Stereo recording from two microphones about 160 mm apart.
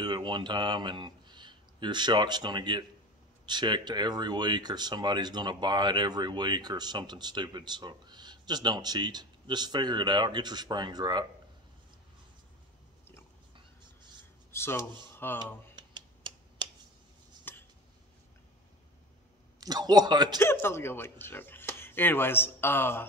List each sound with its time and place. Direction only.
0.0 s speech: 25° right (ahead or behind)
14.5 s speech: 15° left (ahead or behind)
15.7 s a sound: 30° right (ahead or behind)
17.5 s a sound: 15° left (ahead or behind)
19.6 s speech: 25° right (ahead or behind)
20.3 s speech: 15° left (ahead or behind)